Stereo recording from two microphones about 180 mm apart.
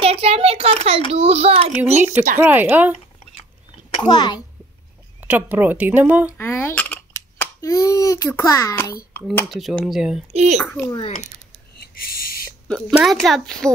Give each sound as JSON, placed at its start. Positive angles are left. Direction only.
{"t": 0.0, "sound": "a child's voice", "side_deg": -35}
{"t": 2.4, "sound": "speech", "side_deg": -10}
{"t": 4.0, "sound": "a child's voice", "side_deg": 25}
{"t": 5.2, "sound": "speech", "side_deg": -10}
{"t": 6.3, "sound": "a child's voice", "side_deg": 10}
{"t": 9.5, "sound": "speech", "side_deg": 0}
{"t": 10.3, "sound": "a child's voice", "side_deg": -35}
{"t": 10.9, "sound": "a child's voice", "side_deg": 35}
{"t": 11.8, "sound": "owl", "side_deg": 55}
{"t": 12.6, "sound": "speech", "side_deg": 0}